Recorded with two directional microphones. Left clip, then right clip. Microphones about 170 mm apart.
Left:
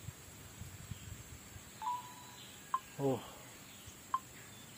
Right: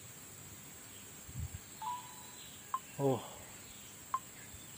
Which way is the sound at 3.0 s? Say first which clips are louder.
Right 4 dB; 30° right (ahead or behind).